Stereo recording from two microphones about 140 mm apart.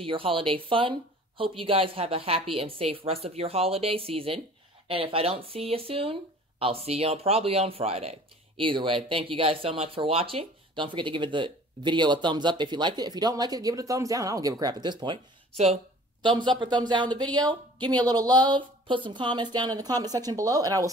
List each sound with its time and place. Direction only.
0.0 s a woman's voice: 40° right (ahead or behind)
15.5 s a woman's voice: 50° right (ahead or behind)
16.2 s speech: 35° right (ahead or behind)